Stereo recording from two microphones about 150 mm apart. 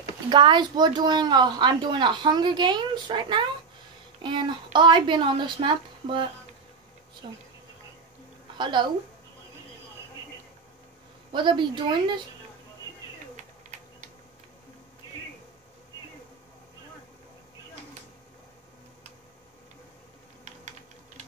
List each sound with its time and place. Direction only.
0.3 s a woman's voice: 30° right (ahead or behind)
8.5 s a woman's voice: 30° right (ahead or behind)
11.3 s speech: 30° right (ahead or behind)